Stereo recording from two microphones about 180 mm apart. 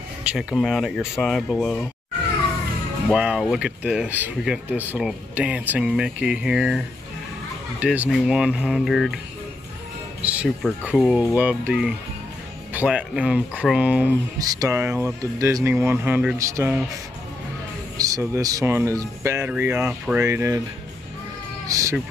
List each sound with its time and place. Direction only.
0.2 s speech: 5° right (ahead or behind)
3.1 s speech: 5° right (ahead or behind)
7.8 s speech: 10° right (ahead or behind)
10.2 s speech: 10° right (ahead or behind)
14.4 s speech: 20° right (ahead or behind)
17.9 s speech: 20° right (ahead or behind)
21.6 s speech: 20° right (ahead or behind)